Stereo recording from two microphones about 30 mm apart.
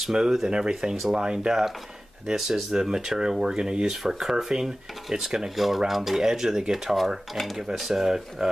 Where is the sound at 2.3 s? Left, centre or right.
Centre.